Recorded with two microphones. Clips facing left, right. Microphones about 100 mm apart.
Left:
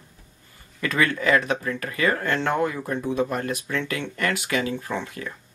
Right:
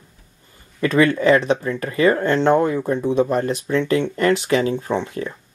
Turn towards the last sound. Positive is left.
turn(degrees=-25)  # may be behind; listen again after turning